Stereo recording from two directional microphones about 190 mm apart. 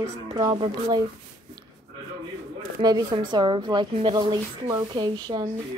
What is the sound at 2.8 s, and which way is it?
A woman's voice, 20° right (ahead or behind).